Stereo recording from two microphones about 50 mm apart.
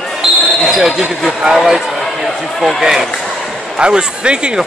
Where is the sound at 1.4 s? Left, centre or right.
Centre.